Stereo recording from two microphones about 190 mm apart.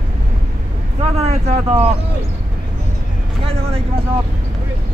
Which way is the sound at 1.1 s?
35° right (ahead or behind).